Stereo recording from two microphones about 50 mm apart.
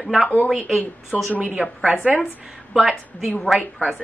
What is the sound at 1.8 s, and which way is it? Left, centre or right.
Speech, centre.